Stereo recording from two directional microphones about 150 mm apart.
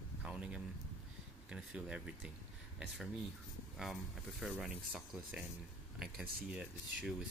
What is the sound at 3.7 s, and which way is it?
Speech, centre (ahead or behind).